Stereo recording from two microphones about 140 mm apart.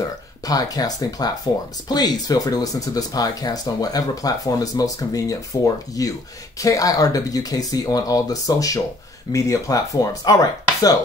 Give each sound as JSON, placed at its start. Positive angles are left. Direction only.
{"t": 0.5, "sound": "speech", "side_deg": 25}